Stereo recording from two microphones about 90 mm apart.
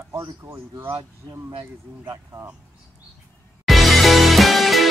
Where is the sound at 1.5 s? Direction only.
60° right (ahead or behind).